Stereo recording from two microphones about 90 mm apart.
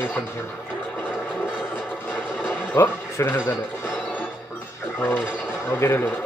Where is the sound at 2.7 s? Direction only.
25° left (ahead or behind).